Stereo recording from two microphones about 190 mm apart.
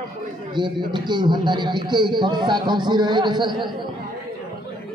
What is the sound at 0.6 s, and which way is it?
A man's voice, 25° right (ahead or behind).